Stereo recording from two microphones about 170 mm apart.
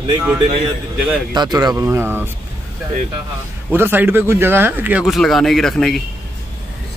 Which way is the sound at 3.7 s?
10° right (ahead or behind).